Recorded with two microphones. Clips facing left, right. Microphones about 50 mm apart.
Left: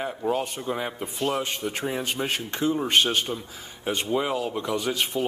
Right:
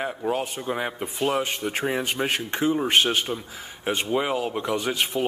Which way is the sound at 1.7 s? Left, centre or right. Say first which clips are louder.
Right 3 dB; right.